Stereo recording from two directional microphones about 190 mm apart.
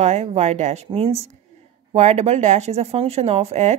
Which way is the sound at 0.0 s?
35° right (ahead or behind).